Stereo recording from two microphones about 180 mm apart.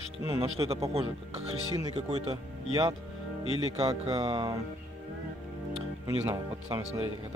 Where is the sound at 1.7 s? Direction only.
20° right (ahead or behind).